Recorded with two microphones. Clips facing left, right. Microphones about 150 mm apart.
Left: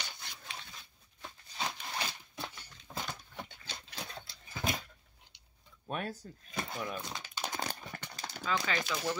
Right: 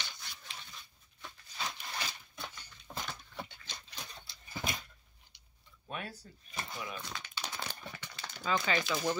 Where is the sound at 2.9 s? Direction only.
10° right (ahead or behind).